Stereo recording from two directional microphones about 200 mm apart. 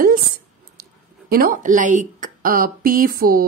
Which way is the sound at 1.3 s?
45° right (ahead or behind).